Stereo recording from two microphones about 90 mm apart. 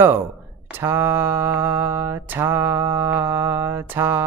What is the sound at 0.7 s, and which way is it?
Mantra, 25° right (ahead or behind).